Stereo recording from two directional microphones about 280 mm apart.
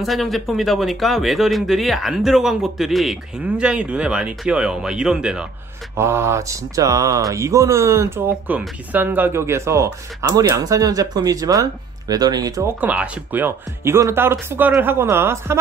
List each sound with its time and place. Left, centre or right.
0.0 s speech: centre